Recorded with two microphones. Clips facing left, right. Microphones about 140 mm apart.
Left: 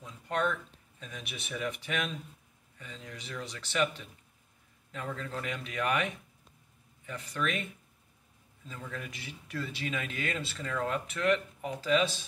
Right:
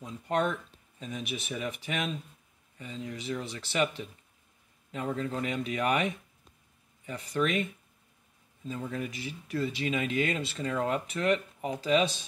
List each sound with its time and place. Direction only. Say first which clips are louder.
0.0 s a sound: right 3 dB; 25° right (ahead or behind)
1.1 s speech: right 5 dB; 15° right (ahead or behind)
2.8 s speech: right 7 dB; 25° right (ahead or behind)
3.2 s speech: right 5 dB; 10° right (ahead or behind)
3.5 s speech: even; 25° right (ahead or behind)
4.9 s speech: right 5 dB; 20° right (ahead or behind)
7.4 s speech: right 5 dB; 30° right (ahead or behind)
8.6 s speech: right 7 dB; 20° right (ahead or behind)